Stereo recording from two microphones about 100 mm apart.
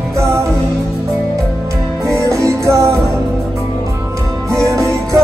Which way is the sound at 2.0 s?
30° right (ahead or behind).